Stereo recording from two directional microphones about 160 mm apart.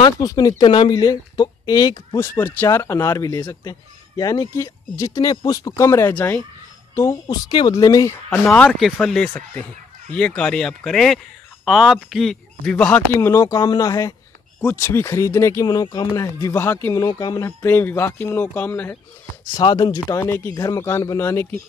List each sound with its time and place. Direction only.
0.0 s speech: 25° left (ahead or behind)
8.3 s speech: 5° left (ahead or behind)
19.5 s speech: 30° left (ahead or behind)
19.9 s speech: 15° left (ahead or behind)